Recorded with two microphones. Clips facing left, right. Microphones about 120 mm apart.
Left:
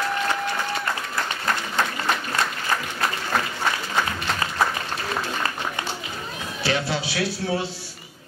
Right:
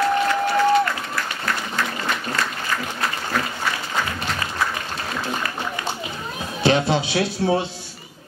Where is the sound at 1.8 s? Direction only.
25° left (ahead or behind).